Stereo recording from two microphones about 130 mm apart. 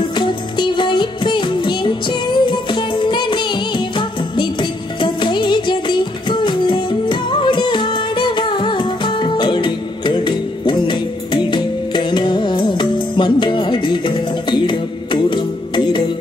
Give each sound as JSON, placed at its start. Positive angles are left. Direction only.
{"t": 0.2, "sound": "music", "side_deg": 40}